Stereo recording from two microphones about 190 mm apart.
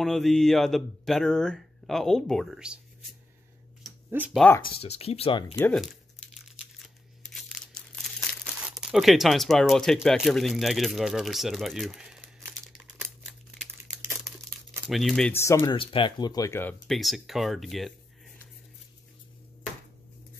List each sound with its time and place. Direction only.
0.0 s speech: centre (ahead or behind)
4.1 s speech: 10° right (ahead or behind)
4.8 s speech: 35° left (ahead or behind)
5.6 s crumpling: 5° left (ahead or behind)
8.6 s speech: centre (ahead or behind)
14.9 s speech: centre (ahead or behind)
15.7 s speech: 25° left (ahead or behind)
16.8 s speech: centre (ahead or behind)